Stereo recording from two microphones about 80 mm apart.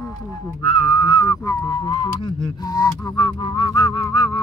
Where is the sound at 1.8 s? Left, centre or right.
Left.